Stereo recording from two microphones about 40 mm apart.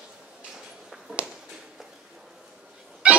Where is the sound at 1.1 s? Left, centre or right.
Right.